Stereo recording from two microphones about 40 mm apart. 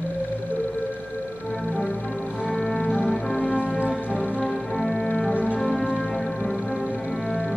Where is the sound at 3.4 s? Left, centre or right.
Left.